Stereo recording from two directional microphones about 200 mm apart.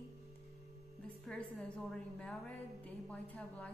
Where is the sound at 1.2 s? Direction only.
5° left (ahead or behind).